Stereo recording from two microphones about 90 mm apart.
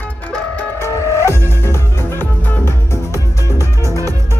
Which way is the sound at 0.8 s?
30° left (ahead or behind).